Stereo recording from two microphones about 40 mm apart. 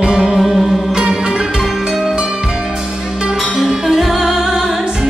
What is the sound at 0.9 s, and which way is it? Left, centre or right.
Music, centre.